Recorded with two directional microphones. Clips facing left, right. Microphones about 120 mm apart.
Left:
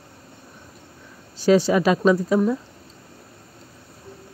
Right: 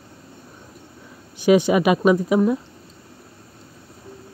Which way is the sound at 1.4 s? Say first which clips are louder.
Right 1 dB; 15° right (ahead or behind).